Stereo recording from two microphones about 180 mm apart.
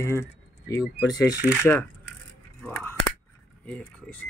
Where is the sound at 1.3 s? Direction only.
5° right (ahead or behind).